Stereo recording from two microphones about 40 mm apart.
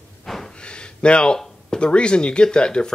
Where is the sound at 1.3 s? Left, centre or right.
Centre.